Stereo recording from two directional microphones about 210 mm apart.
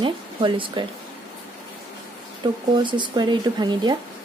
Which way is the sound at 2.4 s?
20° right (ahead or behind).